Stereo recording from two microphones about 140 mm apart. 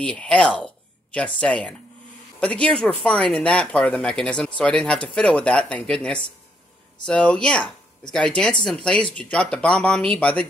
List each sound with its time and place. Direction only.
0.0 s speech: 10° left (ahead or behind)